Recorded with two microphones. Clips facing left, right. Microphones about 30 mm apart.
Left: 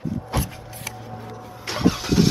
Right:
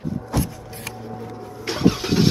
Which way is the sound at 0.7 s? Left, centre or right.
Right.